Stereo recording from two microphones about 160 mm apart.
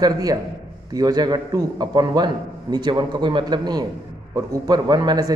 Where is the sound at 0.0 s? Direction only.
25° right (ahead or behind).